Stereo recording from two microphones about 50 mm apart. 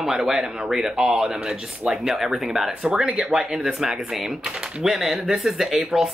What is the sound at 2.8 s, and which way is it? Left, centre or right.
Speech, centre.